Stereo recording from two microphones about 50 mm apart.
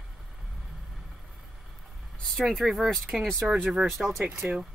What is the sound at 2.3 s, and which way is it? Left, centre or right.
Speech, centre.